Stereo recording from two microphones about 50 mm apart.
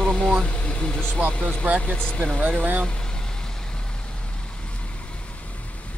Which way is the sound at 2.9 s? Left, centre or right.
Centre.